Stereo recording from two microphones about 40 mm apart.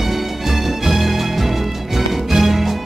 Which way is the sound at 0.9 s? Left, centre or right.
Centre.